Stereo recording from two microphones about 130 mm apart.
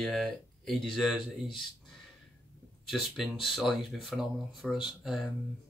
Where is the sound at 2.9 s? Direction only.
Centre (ahead or behind).